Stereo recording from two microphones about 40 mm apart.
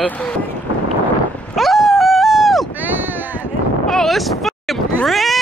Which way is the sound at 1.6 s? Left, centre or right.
Centre.